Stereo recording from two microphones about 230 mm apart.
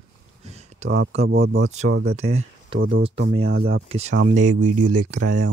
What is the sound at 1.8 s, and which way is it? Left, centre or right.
Speech, right.